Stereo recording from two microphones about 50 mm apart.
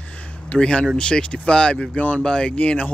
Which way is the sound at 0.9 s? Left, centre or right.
Centre.